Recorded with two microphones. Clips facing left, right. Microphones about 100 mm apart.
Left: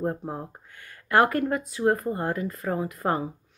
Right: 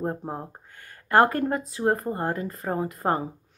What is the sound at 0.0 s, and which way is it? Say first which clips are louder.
Speech: left 1 dB; 25° right (ahead or behind).